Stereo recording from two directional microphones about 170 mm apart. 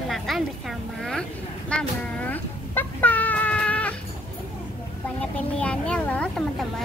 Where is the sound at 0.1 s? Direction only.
Centre (ahead or behind).